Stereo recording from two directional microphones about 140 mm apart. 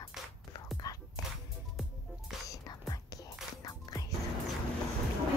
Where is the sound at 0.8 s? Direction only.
25° left (ahead or behind).